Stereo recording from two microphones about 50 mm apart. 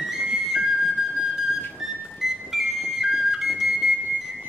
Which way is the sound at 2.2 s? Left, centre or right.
Centre.